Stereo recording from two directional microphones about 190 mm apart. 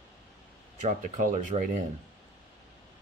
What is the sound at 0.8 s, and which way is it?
Speech, 40° right (ahead or behind).